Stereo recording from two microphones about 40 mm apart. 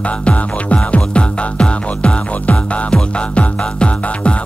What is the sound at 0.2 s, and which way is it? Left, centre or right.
Music, left.